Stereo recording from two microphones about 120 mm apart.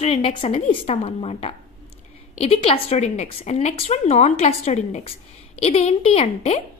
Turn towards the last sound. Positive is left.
turn(degrees=60)  # may be behind; listen again after turning